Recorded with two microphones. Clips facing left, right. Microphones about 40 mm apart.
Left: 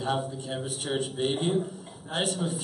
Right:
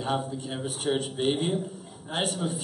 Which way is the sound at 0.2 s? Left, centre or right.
Centre.